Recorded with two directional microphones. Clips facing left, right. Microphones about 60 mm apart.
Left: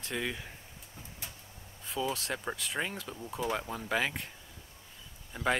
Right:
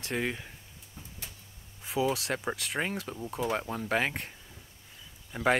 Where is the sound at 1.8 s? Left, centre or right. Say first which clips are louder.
Right 5 dB; centre.